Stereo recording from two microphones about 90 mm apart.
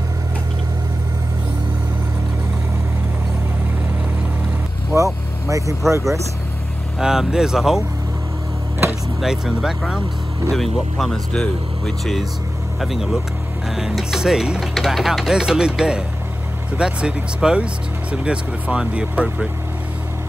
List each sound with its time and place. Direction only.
4.9 s vehicle: 35° right (ahead or behind)
5.9 s speech: 35° right (ahead or behind)
7.0 s speech: 5° right (ahead or behind)
9.2 s speech: 5° right (ahead or behind)